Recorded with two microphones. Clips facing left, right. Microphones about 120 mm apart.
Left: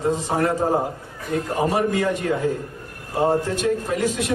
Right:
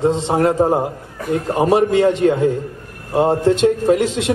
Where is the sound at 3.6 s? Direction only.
25° right (ahead or behind).